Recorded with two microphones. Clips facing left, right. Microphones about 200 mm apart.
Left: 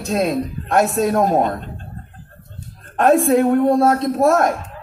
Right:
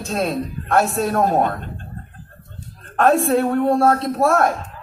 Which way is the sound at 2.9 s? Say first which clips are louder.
Left 2 dB; 20° left (ahead or behind).